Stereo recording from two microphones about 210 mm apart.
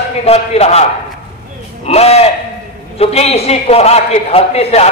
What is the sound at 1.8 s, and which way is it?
A man's voice, 30° left (ahead or behind).